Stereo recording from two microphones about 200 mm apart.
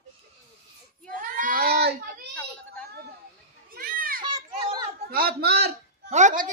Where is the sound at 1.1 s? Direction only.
40° right (ahead or behind).